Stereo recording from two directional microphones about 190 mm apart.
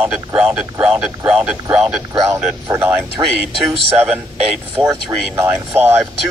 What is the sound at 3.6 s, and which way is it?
Speech, 5° right (ahead or behind).